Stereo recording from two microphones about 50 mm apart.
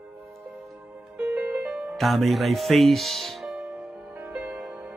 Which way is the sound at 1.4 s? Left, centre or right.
Right.